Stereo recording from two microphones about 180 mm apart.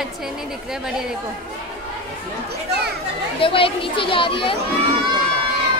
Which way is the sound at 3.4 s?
30° left (ahead or behind).